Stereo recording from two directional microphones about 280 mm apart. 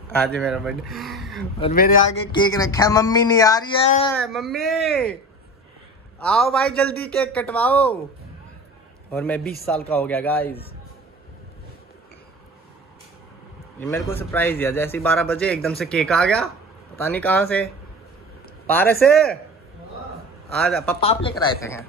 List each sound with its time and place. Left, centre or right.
0.4 s a man's voice: centre
1.6 s speech: left
2.3 s a man's voice: centre
4.1 s a man's voice: centre
6.1 s a man's voice: centre
9.1 s a man's voice: centre
9.4 s a man's voice: left
9.7 s a man's voice: centre
13.7 s a man's voice: centre
18.7 s a man's voice: centre
20.5 s a man's voice: centre
21.0 s speech: centre